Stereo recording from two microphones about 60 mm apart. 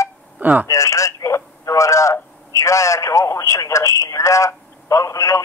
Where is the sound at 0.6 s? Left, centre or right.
Left.